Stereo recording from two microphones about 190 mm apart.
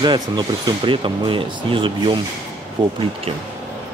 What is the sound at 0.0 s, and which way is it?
Speech, 25° right (ahead or behind).